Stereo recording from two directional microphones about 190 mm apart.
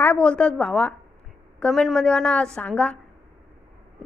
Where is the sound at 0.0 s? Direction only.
5° left (ahead or behind).